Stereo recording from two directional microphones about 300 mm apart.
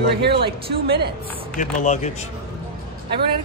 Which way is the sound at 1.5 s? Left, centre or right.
Left.